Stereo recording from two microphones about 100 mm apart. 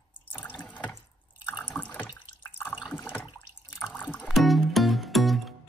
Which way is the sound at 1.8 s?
15° left (ahead or behind).